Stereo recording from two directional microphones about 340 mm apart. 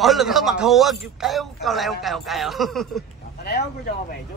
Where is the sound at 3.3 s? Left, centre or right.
Left.